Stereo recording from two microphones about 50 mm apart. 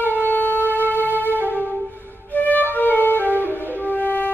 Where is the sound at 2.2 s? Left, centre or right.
Left.